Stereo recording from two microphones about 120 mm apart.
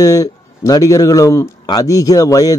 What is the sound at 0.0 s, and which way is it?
A man's voice, 30° left (ahead or behind).